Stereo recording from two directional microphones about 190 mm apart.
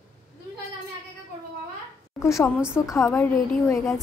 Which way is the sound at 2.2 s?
15° left (ahead or behind).